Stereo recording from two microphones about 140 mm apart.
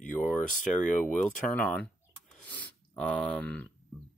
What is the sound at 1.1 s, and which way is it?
Speech, 10° left (ahead or behind).